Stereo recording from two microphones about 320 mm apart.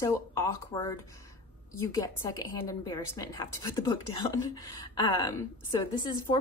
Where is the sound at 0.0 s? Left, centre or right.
Centre.